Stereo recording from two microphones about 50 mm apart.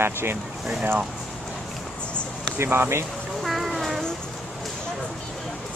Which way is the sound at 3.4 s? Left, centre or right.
Centre.